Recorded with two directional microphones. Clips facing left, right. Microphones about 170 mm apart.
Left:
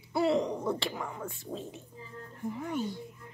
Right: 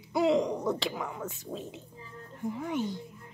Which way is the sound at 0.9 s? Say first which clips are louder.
Right 2 dB; centre (ahead or behind).